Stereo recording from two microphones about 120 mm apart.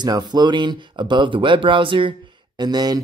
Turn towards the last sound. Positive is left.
turn(degrees=-35)  # may be behind; listen again after turning